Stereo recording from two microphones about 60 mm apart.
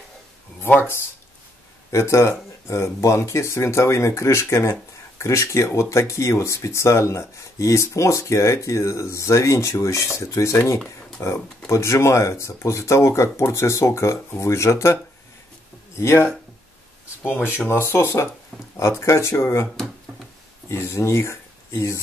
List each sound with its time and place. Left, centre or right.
0.7 s speech: left
17.2 s speech: left